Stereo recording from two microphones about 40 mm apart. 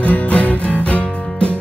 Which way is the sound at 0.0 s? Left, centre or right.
Left.